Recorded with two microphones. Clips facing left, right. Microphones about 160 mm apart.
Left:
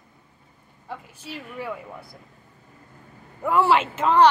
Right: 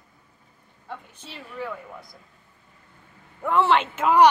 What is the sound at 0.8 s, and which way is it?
Speech, 10° left (ahead or behind).